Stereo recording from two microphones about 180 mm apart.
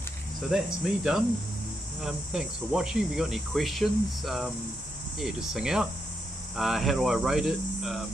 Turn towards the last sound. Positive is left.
turn(degrees=0)  # may be behind; listen again after turning